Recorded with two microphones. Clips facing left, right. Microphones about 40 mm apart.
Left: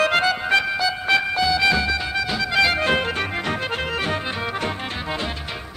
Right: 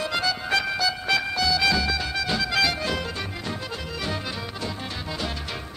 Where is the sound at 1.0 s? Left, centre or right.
Left; by 2.5 s centre.